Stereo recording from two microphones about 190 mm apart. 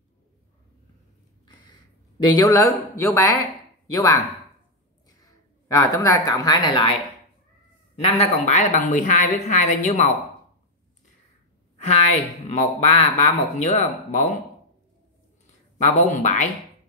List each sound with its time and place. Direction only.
2.2 s speech: 20° left (ahead or behind)
5.7 s speech: 15° left (ahead or behind)
8.0 s a woman's voice: 35° left (ahead or behind)
11.7 s a sound: 35° left (ahead or behind)
12.4 s a woman's voice: 35° left (ahead or behind)
16.1 s a woman's voice: 40° left (ahead or behind)